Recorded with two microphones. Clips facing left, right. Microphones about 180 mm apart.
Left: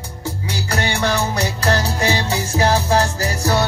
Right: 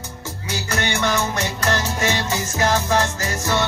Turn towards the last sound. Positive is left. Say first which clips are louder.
# left 3 dB
turn(degrees=35)  # may be behind; listen again after turning